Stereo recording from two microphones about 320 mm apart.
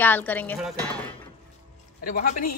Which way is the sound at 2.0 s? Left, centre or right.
Left.